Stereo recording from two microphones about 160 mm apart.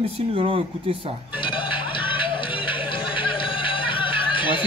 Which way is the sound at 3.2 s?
30° left (ahead or behind).